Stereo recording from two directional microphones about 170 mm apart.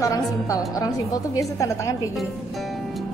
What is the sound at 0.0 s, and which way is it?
A woman's voice, 20° left (ahead or behind).